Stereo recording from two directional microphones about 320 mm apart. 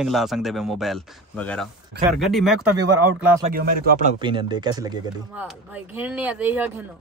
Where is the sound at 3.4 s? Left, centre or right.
Right; by 6.8 s centre.